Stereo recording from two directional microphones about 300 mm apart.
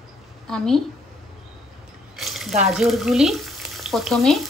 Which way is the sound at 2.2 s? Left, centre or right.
Centre.